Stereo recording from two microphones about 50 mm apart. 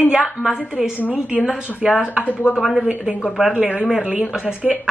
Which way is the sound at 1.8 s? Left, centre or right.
Centre.